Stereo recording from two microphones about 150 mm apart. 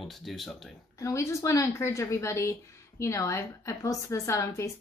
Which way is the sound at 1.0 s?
20° left (ahead or behind).